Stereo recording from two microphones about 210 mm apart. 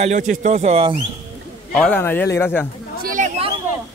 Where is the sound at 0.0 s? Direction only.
35° right (ahead or behind).